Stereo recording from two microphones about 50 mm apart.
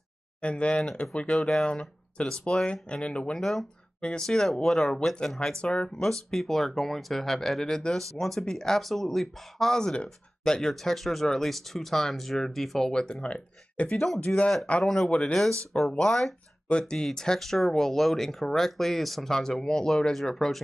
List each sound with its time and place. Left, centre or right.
0.4 s speech: left
3.3 s speech: centre
6.3 s speech: centre; by 13.9 s left
13.9 s speech: centre
14.2 s speech: left
16.0 s speech: centre